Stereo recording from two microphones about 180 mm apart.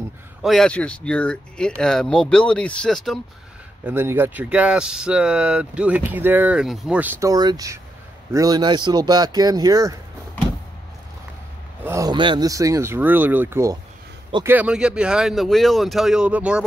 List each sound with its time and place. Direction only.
0.4 s speech: centre (ahead or behind)
3.8 s speech: 10° right (ahead or behind)
11.8 s speech: 15° right (ahead or behind)